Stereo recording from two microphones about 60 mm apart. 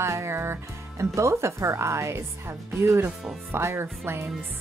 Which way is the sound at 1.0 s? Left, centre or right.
Right.